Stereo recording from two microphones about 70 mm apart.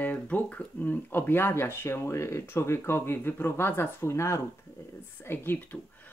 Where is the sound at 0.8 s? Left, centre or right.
Left.